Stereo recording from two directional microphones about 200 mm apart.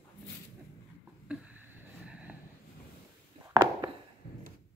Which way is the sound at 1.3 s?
10° right (ahead or behind).